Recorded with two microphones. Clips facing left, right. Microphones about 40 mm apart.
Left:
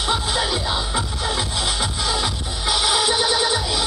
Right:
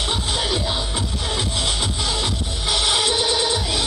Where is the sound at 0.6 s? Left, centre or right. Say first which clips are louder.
Left 1 dB; centre.